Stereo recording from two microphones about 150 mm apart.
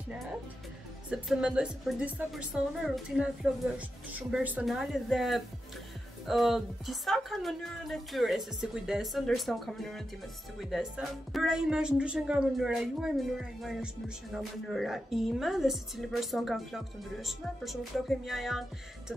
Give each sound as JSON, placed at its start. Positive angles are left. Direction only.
{"t": 1.1, "sound": "a woman's voice", "side_deg": -5}
{"t": 4.3, "sound": "speech", "side_deg": -10}